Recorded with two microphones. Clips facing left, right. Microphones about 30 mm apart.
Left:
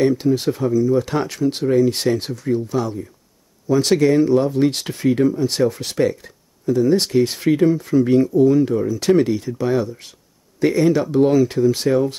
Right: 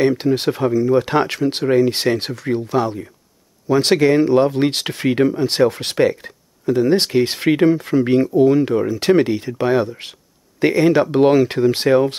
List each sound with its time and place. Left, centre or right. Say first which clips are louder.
0.0 s speech: right 1 dB; right